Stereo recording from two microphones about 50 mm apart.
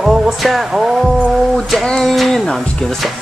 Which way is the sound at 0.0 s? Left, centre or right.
Centre.